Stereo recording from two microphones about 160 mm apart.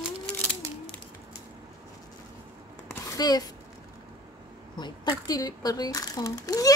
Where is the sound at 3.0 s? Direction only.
25° left (ahead or behind).